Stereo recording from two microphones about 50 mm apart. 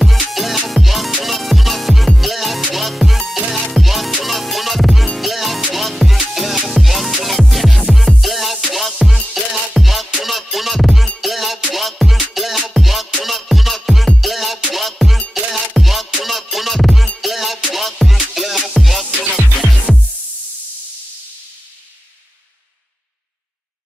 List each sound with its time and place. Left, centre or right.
0.0 s music: centre